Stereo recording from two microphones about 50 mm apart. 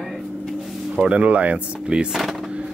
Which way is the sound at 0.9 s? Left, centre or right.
Right.